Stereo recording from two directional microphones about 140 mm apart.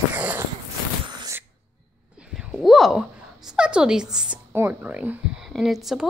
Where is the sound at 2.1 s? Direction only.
5° right (ahead or behind).